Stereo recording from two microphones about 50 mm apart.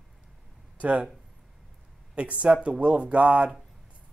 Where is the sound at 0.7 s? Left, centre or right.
Right.